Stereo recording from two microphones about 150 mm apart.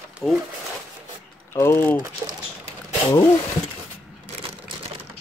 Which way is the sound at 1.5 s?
15° left (ahead or behind).